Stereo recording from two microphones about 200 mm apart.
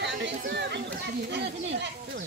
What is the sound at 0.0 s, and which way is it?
Speech, 60° right (ahead or behind).